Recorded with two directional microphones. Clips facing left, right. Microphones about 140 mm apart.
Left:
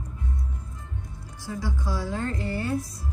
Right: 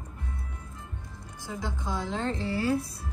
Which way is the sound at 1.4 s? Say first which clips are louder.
Left 3 dB; 20° right (ahead or behind).